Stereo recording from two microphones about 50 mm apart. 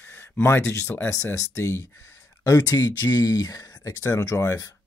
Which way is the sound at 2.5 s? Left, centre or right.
Left.